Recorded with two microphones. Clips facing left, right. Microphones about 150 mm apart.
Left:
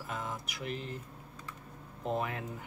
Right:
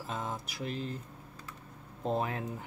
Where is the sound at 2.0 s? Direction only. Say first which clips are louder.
Right 2 dB; 35° right (ahead or behind).